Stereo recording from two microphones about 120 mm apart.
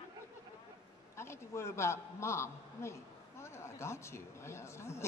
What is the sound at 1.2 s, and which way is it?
A man's voice, 20° left (ahead or behind).